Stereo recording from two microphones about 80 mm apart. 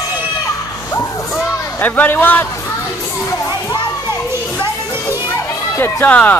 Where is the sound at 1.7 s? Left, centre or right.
Left.